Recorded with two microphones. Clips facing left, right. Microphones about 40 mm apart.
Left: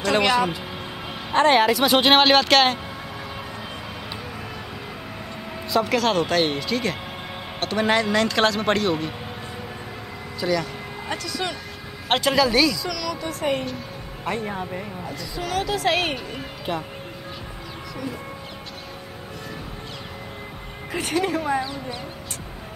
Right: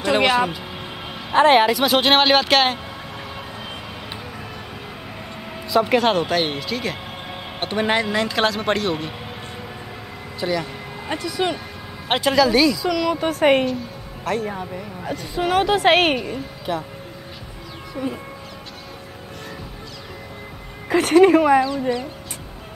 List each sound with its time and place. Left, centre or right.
0.0 s a sound: centre
1.3 s a man's voice: centre
1.7 s speech: centre
5.9 s a man's voice: centre
7.6 s a man's voice: centre
10.4 s speech: centre
12.1 s speech: centre
12.8 s speech: right
13.2 s speech: right
14.2 s speech: left
15.4 s a woman's voice: right
20.9 s speech: right